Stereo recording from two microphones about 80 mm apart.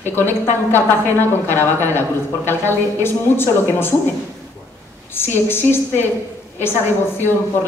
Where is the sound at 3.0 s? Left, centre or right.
Left.